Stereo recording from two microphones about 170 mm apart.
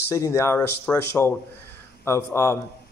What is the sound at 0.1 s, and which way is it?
Speech, 15° left (ahead or behind).